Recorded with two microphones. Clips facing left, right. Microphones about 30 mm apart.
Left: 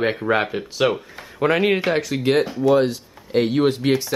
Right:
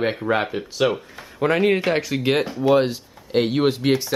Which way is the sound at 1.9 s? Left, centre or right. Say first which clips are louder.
Left 1 dB; centre.